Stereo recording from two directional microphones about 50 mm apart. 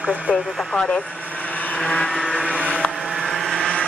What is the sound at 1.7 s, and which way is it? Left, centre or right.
Vehicle, left.